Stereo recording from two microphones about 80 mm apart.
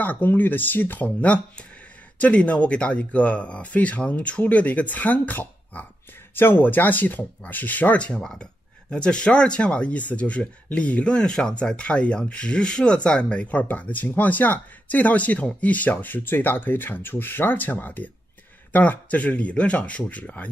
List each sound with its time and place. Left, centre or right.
0.0 s speech: left